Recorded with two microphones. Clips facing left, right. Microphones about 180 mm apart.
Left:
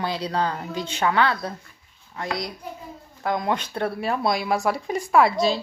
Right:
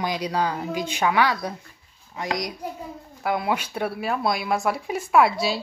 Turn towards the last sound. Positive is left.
turn(degrees=-5)  # may be behind; listen again after turning